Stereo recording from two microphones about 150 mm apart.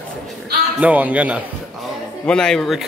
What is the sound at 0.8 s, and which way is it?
Speech, 10° right (ahead or behind).